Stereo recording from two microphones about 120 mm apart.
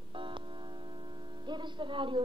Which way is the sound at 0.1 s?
45° right (ahead or behind).